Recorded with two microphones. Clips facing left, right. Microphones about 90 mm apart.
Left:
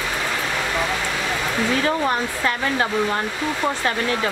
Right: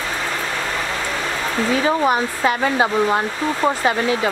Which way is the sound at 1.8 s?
15° right (ahead or behind).